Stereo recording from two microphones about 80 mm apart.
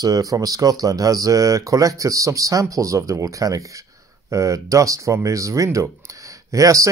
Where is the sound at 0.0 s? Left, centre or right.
Right.